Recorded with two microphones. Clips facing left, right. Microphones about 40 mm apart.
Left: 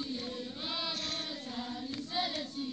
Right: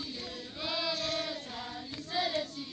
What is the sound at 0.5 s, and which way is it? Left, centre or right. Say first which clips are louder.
Choir: right 7 dB; right.